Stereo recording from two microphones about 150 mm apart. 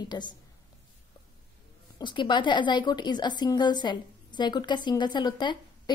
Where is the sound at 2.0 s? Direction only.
30° left (ahead or behind).